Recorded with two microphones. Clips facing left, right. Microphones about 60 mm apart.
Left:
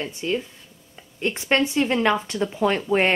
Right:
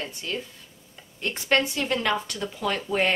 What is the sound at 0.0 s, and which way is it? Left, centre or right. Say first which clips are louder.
Speech: left 6 dB; left.